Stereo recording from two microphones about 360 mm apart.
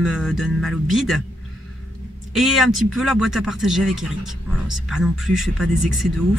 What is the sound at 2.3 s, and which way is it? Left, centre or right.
Speech, centre.